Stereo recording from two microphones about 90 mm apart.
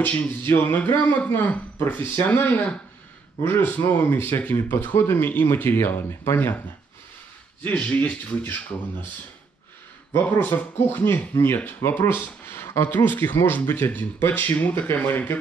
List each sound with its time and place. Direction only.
0.0 s speech: 15° left (ahead or behind)
7.6 s speech: 15° left (ahead or behind)
10.1 s speech: 20° left (ahead or behind)